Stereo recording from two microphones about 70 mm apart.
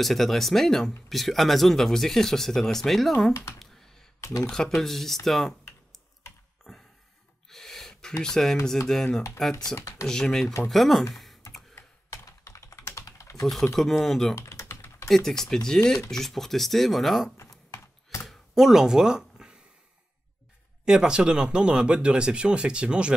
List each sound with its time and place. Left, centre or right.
0.0 s speech: centre
3.5 s a sound: centre
4.2 s a sound: left
4.5 s speech: centre
7.4 s gasp: centre
8.2 s speech: centre
12.3 s typing: left
13.7 s speech: centre
14.3 s typing: left
15.0 s speech: centre
17.4 s a sound: left
18.2 s a sound: centre
20.8 s speech: centre